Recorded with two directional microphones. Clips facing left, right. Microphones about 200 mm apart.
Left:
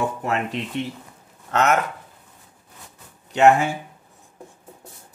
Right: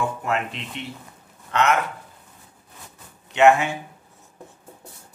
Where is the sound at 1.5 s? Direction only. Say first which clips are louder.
Left 1 dB; 45° left (ahead or behind).